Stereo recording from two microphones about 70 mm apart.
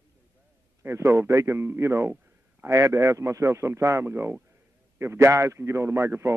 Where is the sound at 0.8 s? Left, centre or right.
Right.